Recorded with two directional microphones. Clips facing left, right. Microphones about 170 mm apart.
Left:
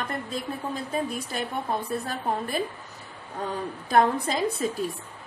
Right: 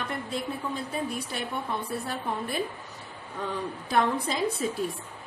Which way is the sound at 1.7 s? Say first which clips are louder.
Left 3 dB; 40° left (ahead or behind).